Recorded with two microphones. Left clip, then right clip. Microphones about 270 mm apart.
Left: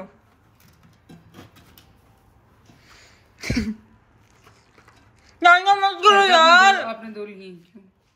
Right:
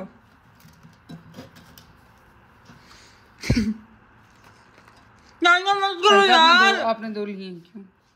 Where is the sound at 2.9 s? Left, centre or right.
Centre.